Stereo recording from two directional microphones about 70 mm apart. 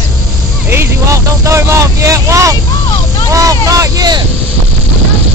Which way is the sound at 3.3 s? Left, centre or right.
Right.